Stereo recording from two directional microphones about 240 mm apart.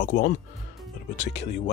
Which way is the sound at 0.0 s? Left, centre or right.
Left.